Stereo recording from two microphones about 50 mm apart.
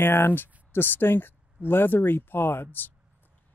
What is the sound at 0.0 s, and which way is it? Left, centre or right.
Speech, left.